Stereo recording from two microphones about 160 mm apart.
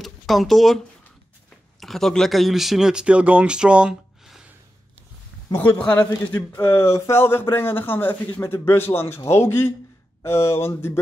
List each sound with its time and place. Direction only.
0.0 s speech: centre (ahead or behind)
5.5 s speech: 10° left (ahead or behind)